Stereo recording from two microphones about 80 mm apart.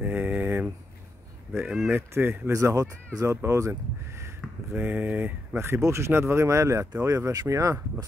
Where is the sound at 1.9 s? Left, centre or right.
Right.